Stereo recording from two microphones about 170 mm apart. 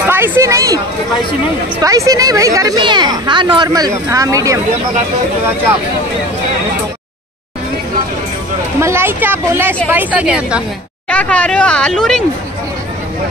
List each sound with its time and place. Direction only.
0.0 s a sound: 15° right (ahead or behind)
1.8 s a woman's voice: 20° right (ahead or behind)
8.8 s a woman's voice: 15° right (ahead or behind)
11.1 s speech: 5° left (ahead or behind)